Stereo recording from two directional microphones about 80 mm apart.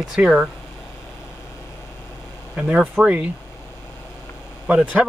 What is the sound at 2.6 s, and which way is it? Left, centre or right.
Speech, centre.